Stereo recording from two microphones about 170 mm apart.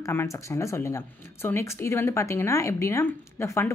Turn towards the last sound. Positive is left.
turn(degrees=15)  # may be behind; listen again after turning